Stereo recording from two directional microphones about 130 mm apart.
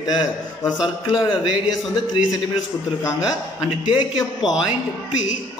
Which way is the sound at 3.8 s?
35° left (ahead or behind).